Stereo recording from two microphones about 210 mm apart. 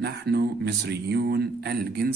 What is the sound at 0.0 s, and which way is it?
Speech, 50° right (ahead or behind).